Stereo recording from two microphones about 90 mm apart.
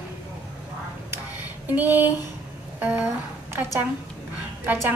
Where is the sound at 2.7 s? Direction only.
20° right (ahead or behind).